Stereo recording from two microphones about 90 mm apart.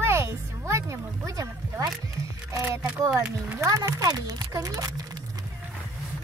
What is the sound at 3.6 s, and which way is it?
Speech, 35° right (ahead or behind).